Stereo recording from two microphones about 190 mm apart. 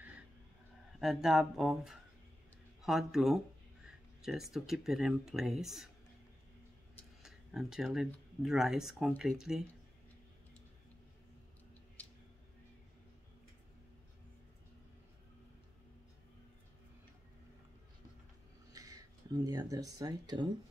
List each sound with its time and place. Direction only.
0.9 s speech: centre (ahead or behind)
7.2 s speech: centre (ahead or behind)
18.7 s speech: 20° right (ahead or behind)